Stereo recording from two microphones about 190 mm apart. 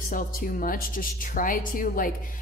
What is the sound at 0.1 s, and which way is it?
A woman's voice, 45° left (ahead or behind).